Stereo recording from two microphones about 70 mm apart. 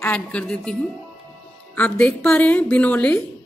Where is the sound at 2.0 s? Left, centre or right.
Left.